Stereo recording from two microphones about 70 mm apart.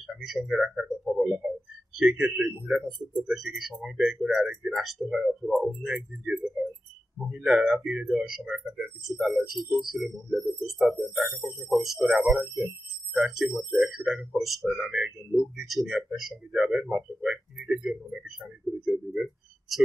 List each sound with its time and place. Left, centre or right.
0.0 s speech: centre
1.1 s speech: right
2.0 s speech: centre
3.1 s speech: centre